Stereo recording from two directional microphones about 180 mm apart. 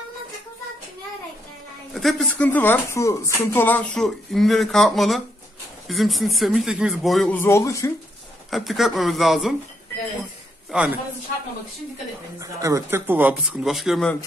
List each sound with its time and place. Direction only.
2.0 s a woman's voice: centre (ahead or behind)
7.3 s speech: 15° left (ahead or behind)
8.5 s a woman's voice: centre (ahead or behind)
10.7 s a man's voice: 5° right (ahead or behind)
12.4 s speech: 15° right (ahead or behind); by 14.1 s centre (ahead or behind)